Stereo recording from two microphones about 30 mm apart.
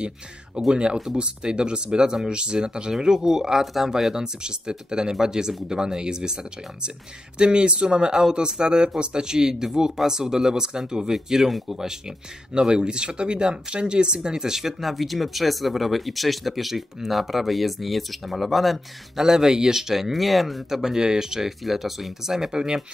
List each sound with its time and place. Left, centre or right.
0.7 s speech: right
7.3 s speech: right
8.1 s speech: centre
8.4 s speech: right; by 11.5 s centre
12.7 s speech: right
14.3 s speech: centre
19.1 s speech: centre
20.8 s speech: centre
21.6 s speech: centre
22.5 s speech: right